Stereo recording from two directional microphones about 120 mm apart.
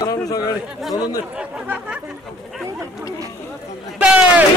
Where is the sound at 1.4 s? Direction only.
10° right (ahead or behind).